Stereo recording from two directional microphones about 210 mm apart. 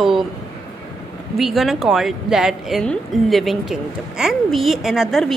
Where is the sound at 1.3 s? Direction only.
Centre (ahead or behind).